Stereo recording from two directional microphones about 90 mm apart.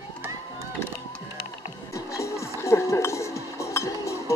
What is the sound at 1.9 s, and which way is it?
Music, 35° left (ahead or behind).